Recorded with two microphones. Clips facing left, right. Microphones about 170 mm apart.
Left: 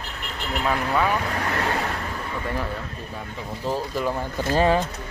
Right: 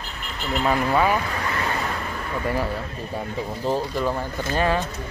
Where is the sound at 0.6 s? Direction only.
5° right (ahead or behind).